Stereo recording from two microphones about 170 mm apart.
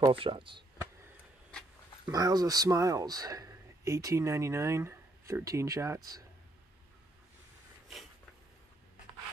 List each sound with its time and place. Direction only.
0.1 s speech: 30° right (ahead or behind)
2.0 s speech: 20° right (ahead or behind)